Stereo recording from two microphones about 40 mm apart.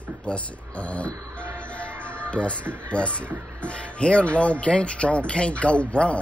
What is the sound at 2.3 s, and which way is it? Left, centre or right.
Speech, left.